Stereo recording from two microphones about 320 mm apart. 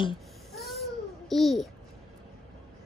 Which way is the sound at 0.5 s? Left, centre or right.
Centre.